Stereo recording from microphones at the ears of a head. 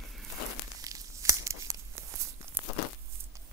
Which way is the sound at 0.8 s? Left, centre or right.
Right.